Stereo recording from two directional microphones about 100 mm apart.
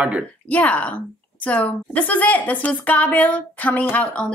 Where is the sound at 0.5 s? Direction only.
15° left (ahead or behind).